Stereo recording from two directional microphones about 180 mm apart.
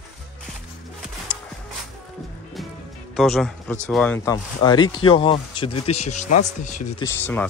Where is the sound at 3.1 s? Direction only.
Centre (ahead or behind).